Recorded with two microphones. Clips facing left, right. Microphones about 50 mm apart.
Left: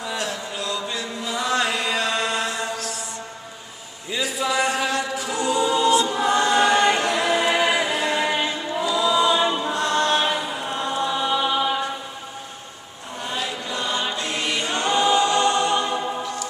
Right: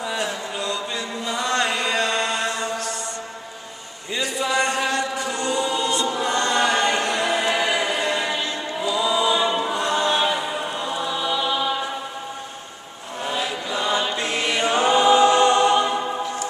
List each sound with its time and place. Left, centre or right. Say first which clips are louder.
0.0 s chant: right 2 dB; centre
4.1 s a capella: even; centre
8.3 s a capella: left 2 dB; centre
8.8 s choir: left 1 dB; centre
13.2 s chant: right 2 dB; centre
14.1 s choir: right 2 dB; centre